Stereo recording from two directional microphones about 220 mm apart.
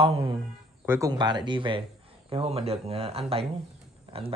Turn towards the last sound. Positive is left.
turn(degrees=-25)  # may be behind; listen again after turning